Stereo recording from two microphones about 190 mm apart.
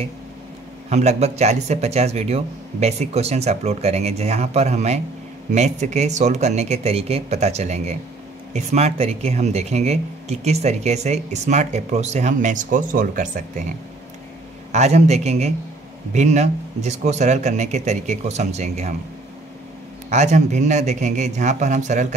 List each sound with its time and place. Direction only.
0.8 s speech: 35° right (ahead or behind)
14.7 s speech: 35° right (ahead or behind)
20.1 s speech: 35° right (ahead or behind)